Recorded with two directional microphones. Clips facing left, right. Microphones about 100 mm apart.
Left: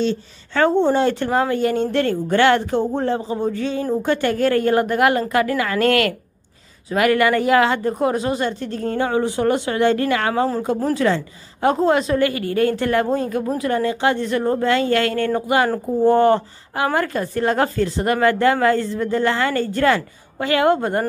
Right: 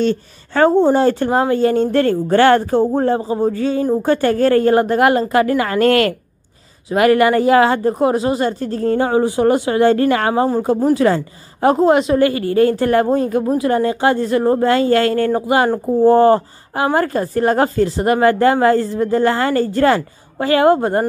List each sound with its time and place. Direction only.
0.5 s a woman's voice: 40° right (ahead or behind)